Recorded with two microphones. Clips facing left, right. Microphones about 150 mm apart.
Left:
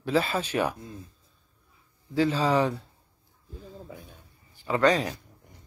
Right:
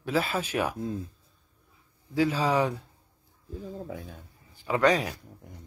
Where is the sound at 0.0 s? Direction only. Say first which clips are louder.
Left 2 dB; 5° right (ahead or behind).